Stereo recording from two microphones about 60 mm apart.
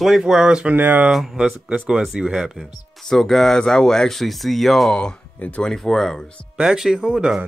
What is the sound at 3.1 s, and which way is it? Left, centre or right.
Speech, centre.